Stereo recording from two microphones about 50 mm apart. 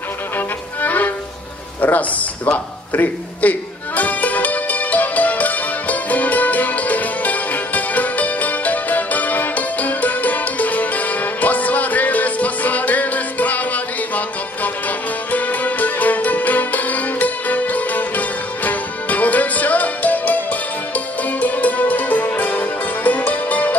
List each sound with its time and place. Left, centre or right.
0.8 s music: left
1.8 s a sound: left
14.1 s music: left